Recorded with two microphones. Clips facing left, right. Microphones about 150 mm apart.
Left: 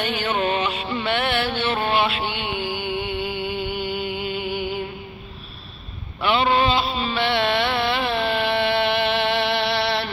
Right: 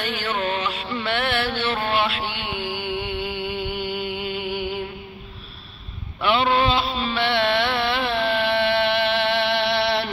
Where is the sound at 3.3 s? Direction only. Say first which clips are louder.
Left 1 dB; 45° left (ahead or behind).